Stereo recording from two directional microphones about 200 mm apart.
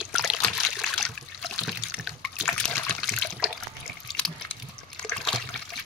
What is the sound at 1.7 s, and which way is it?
Water, centre (ahead or behind).